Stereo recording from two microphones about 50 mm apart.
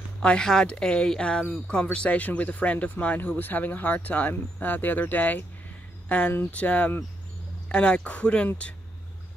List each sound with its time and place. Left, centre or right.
0.2 s speech: centre